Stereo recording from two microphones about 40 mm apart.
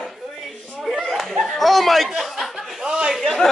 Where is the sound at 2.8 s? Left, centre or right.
Right.